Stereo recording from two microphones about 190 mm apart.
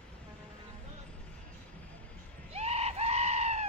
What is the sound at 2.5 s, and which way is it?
Screaming, 35° right (ahead or behind).